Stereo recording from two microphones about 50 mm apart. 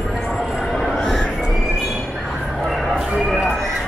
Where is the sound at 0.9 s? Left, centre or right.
Centre.